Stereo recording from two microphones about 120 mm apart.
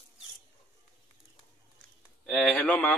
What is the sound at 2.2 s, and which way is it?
Speech, 5° left (ahead or behind).